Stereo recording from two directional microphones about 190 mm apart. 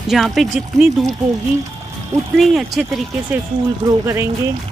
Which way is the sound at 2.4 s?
Centre (ahead or behind).